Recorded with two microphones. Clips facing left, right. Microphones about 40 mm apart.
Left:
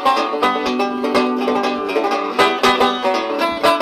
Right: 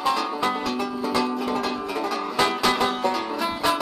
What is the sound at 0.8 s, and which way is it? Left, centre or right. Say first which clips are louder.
Music: left 8 dB; left.